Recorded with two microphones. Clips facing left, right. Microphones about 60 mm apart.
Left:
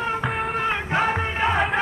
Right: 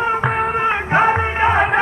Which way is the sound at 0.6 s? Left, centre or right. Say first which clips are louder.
Right 7 dB; right.